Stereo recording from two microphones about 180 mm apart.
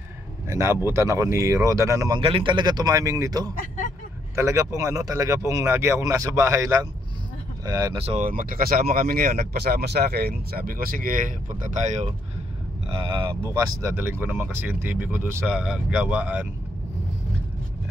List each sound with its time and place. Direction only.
0.5 s speech: 15° right (ahead or behind)
8.0 s speech: 35° right (ahead or behind)
8.3 s speech: 50° right (ahead or behind)
12.9 s speech: 25° right (ahead or behind); by 16.4 s 5° right (ahead or behind)